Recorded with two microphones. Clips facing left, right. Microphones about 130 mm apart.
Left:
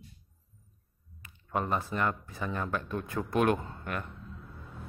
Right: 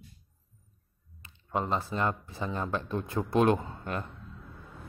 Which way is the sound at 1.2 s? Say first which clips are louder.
Right 1 dB; 25° right (ahead or behind).